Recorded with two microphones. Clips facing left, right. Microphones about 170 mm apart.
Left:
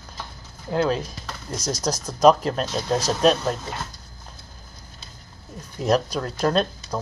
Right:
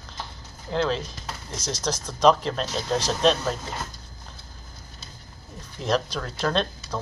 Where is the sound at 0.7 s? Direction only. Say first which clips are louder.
Left 3 dB; 10° left (ahead or behind).